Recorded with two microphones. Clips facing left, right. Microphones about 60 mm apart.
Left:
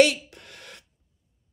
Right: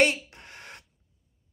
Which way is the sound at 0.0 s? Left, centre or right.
Right.